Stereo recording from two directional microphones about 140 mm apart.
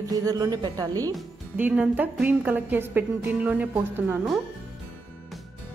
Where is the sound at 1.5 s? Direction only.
10° right (ahead or behind).